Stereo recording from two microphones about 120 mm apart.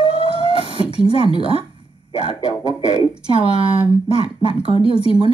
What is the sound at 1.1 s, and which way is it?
Speech, 50° left (ahead or behind).